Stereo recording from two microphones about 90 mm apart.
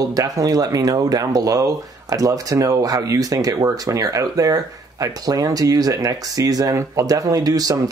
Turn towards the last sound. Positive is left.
turn(degrees=-45)  # may be behind; listen again after turning